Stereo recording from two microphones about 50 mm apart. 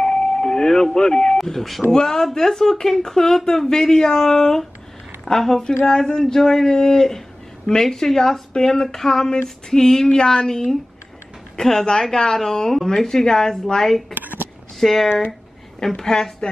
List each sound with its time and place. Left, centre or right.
0.0 s doorbell: centre
1.4 s speech: centre
14.1 s a sound: right
14.8 s speech: centre